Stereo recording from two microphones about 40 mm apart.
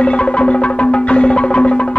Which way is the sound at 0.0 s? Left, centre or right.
Left.